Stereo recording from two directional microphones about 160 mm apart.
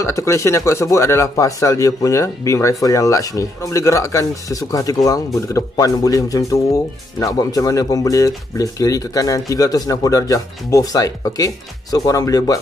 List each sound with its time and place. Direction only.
0.0 s speech: 15° left (ahead or behind)